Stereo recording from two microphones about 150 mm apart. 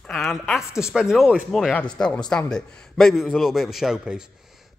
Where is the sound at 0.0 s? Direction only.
Centre (ahead or behind).